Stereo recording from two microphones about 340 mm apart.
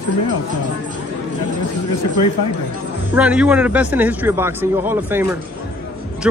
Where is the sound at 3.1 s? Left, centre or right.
Centre.